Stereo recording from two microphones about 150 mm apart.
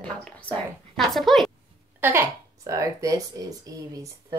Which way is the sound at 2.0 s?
15° right (ahead or behind).